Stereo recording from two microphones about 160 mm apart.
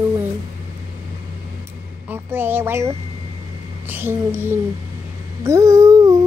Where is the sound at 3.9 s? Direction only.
15° right (ahead or behind).